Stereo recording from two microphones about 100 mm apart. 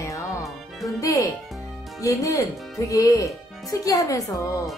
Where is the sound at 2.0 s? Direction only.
35° left (ahead or behind).